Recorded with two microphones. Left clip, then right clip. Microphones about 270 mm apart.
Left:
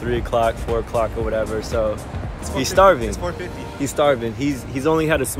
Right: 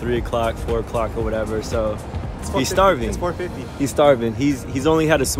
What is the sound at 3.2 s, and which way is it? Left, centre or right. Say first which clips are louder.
Speech: right 2 dB; centre.